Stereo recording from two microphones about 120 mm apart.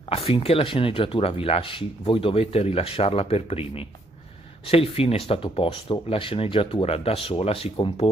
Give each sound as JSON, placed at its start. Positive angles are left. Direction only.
{"t": 0.1, "sound": "speech", "side_deg": 55}